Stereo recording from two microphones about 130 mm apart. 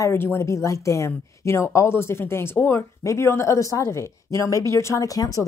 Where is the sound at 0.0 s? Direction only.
20° left (ahead or behind).